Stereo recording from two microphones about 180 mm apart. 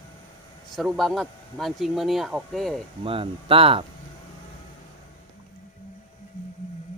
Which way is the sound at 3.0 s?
30° right (ahead or behind).